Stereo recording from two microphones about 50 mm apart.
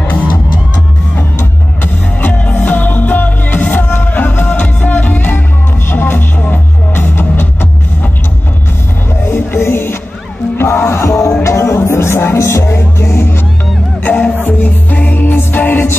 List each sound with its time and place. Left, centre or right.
2.6 s music: left
9.3 s music: left
12.4 s music: left
13.0 s music: left
14.0 s music: left